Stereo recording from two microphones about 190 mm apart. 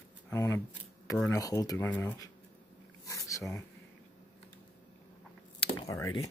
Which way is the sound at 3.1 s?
15° left (ahead or behind).